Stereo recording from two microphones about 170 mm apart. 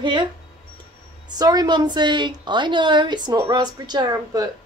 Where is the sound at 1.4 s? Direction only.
25° right (ahead or behind).